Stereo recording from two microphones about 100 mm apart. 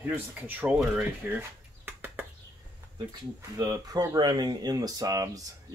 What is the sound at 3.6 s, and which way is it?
Speech, 40° right (ahead or behind).